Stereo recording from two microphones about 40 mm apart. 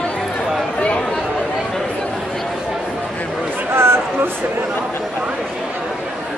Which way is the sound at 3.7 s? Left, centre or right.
Right.